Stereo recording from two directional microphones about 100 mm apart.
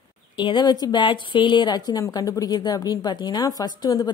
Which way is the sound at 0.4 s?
50° left (ahead or behind).